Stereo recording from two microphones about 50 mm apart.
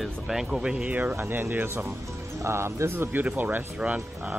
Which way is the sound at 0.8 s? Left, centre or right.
Right.